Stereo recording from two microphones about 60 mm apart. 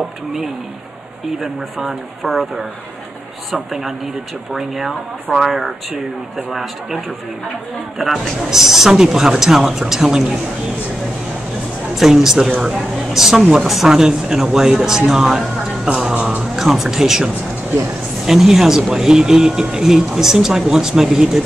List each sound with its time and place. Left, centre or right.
1.4 s speech: centre
4.6 s speech: centre
8.0 s speech: centre
11.9 s speech: centre